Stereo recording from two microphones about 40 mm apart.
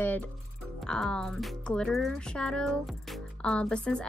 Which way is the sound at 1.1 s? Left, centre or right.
Left.